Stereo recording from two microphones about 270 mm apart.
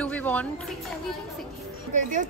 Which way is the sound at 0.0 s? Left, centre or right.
Centre.